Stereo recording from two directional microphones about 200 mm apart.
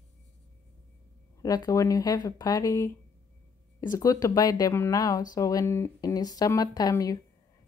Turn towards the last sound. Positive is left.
turn(degrees=15)  # may be behind; listen again after turning